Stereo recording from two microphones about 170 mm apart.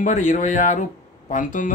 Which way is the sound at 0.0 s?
45° left (ahead or behind).